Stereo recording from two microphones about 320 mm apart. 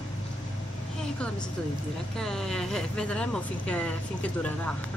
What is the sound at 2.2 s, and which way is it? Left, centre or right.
Speech, centre.